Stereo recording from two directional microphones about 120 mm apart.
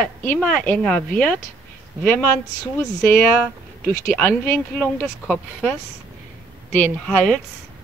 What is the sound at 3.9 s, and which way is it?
Speech, 25° left (ahead or behind).